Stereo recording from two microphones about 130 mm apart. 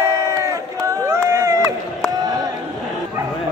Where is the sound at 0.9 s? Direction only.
20° right (ahead or behind).